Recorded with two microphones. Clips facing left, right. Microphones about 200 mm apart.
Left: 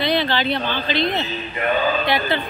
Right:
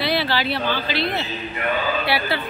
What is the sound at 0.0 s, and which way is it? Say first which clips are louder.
Speech: left 2 dB; 5° right (ahead or behind).